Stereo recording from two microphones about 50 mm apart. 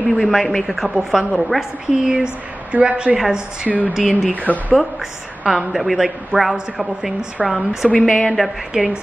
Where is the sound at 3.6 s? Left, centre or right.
Right.